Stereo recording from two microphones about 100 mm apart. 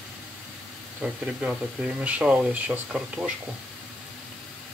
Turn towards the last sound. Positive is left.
turn(degrees=-10)  # may be behind; listen again after turning